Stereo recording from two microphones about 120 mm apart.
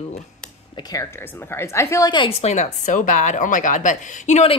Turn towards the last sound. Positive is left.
turn(degrees=80)